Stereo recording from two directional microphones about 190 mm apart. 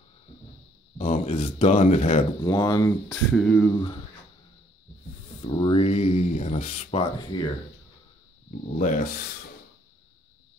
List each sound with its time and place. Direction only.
0.9 s speech: 40° left (ahead or behind)
2.4 s speech: 20° left (ahead or behind)
3.3 s speech: 5° left (ahead or behind)
5.4 s speech: 30° left (ahead or behind)
8.5 s rub: 40° left (ahead or behind)